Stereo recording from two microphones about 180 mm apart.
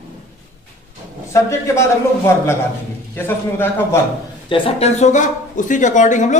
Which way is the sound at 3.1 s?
10° left (ahead or behind).